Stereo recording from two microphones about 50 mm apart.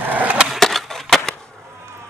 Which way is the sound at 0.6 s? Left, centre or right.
Centre.